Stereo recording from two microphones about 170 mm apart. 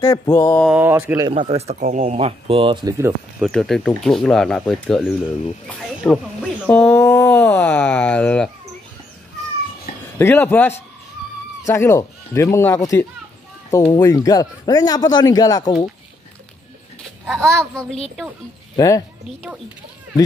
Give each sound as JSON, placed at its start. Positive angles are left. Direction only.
{"t": 0.0, "sound": "speech", "side_deg": 25}
{"t": 0.7, "sound": "speech", "side_deg": -10}
{"t": 1.3, "sound": "speech", "side_deg": -35}
{"t": 1.8, "sound": "speech", "side_deg": -45}
{"t": 3.3, "sound": "speech", "side_deg": 0}
{"t": 6.9, "sound": "speech", "side_deg": 15}
{"t": 10.1, "sound": "speech", "side_deg": 15}
{"t": 14.0, "sound": "speech", "side_deg": 20}
{"t": 17.3, "sound": "speech", "side_deg": 0}
{"t": 18.8, "sound": "speech", "side_deg": 20}